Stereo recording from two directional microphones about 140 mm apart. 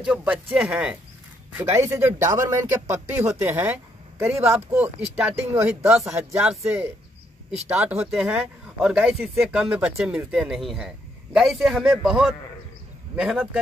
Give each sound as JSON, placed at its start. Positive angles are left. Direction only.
{"t": 0.0, "sound": "speech", "side_deg": -5}
{"t": 5.5, "sound": "speech", "side_deg": -20}
{"t": 6.4, "sound": "speech", "side_deg": -5}